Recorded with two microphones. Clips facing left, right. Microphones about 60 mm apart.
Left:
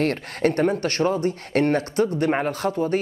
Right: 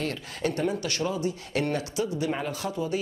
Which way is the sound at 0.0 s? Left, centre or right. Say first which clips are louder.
Left 8 dB; left.